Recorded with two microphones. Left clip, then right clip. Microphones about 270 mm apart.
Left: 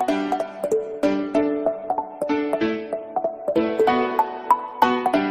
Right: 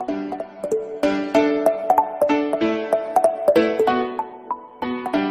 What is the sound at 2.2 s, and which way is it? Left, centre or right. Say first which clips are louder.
Music: right 3 dB; centre.